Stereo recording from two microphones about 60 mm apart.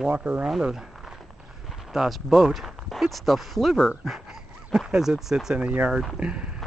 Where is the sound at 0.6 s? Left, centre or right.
Centre.